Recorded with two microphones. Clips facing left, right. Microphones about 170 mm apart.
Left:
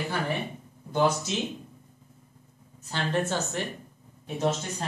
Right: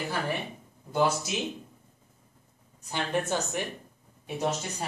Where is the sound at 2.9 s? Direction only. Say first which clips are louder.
Left 1 dB; 15° right (ahead or behind).